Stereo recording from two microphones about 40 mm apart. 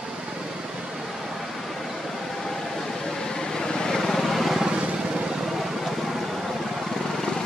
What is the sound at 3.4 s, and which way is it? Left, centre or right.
Vehicle, centre.